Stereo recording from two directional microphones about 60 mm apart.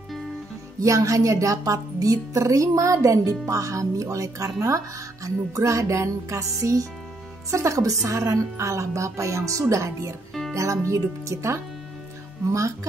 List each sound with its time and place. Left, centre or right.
0.7 s a woman's voice: right